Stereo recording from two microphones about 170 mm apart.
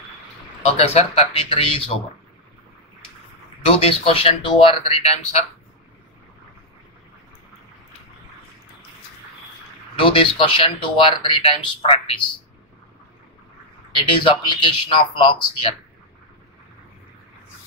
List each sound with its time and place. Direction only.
0.7 s speech: 35° left (ahead or behind)
3.8 s speech: 35° left (ahead or behind)
9.9 s speech: 30° left (ahead or behind)
13.9 s speech: 30° left (ahead or behind)